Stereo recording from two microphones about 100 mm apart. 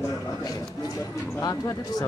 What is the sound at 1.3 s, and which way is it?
Speech, 35° left (ahead or behind).